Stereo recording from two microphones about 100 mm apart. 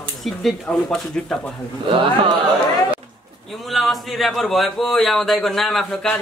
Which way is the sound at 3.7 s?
Centre (ahead or behind).